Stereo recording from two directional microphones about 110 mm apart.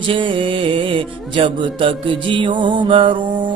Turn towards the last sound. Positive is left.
turn(degrees=-50)  # may be behind; listen again after turning